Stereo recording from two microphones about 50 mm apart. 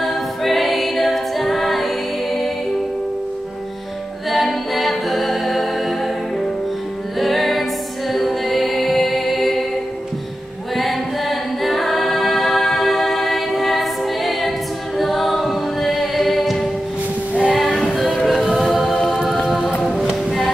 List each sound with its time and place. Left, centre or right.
0.0 s a capella: centre
4.3 s a capella: centre
7.2 s music: centre
10.8 s a capella: centre
17.3 s music: right
17.6 s music: centre
18.2 s a capella: centre
20.2 s music: centre